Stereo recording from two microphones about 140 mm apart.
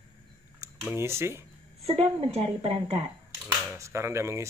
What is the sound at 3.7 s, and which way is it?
Speech, 20° right (ahead or behind).